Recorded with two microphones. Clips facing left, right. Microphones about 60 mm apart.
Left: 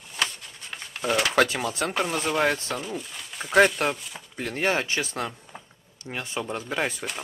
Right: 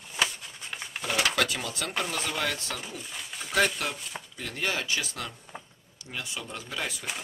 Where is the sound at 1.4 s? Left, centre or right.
Left.